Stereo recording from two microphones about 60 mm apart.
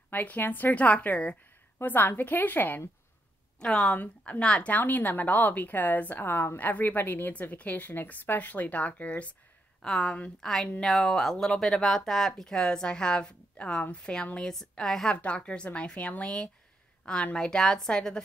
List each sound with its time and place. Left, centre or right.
0.1 s a woman's voice: left
1.8 s a woman's voice: left
3.5 s a woman's voice: centre
9.8 s a woman's voice: centre
14.5 s a woman's voice: centre
15.0 s a woman's voice: centre